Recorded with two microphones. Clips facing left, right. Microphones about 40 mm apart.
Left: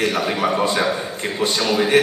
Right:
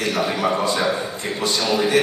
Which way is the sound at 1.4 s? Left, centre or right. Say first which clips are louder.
Left 1 dB; left.